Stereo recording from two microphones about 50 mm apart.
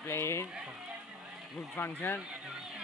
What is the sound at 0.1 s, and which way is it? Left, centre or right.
Speech, left.